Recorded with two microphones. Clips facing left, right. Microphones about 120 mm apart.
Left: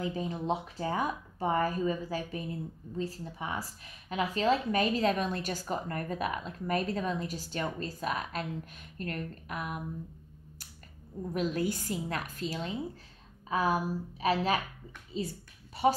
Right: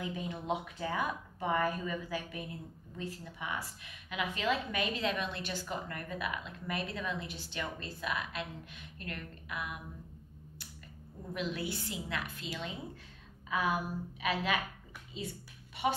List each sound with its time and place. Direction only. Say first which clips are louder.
0.0 s a woman's voice: left 5 dB; 35° left (ahead or behind)
11.3 s a woman's voice: left 6 dB; 45° left (ahead or behind)
15.1 s a sound: left 6 dB; 35° left (ahead or behind)